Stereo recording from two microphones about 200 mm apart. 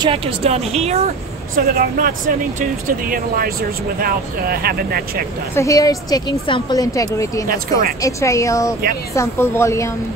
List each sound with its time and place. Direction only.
0.0 s a woman's voice: 30° right (ahead or behind); by 5.2 s 50° right (ahead or behind)
5.5 s a woman's voice: 15° left (ahead or behind)
7.4 s speech: 45° right (ahead or behind)
8.0 s a woman's voice: 15° left (ahead or behind)